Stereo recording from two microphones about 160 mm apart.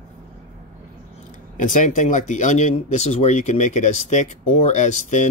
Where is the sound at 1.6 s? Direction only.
55° left (ahead or behind).